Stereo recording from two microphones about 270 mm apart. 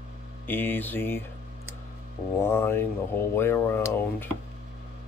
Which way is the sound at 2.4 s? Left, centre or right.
Centre.